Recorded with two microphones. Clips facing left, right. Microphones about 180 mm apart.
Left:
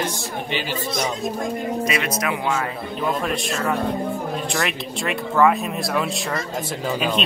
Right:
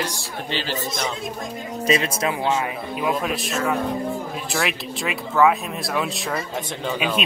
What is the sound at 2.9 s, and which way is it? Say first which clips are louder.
Speech: even; 5° right (ahead or behind).